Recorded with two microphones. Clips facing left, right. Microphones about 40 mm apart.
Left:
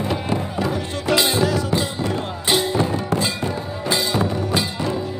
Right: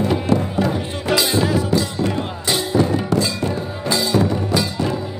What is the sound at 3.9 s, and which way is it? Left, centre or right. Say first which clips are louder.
Music: right 3 dB; left.